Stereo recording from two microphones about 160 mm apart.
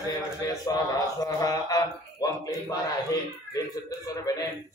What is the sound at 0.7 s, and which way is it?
A man's voice, 20° left (ahead or behind).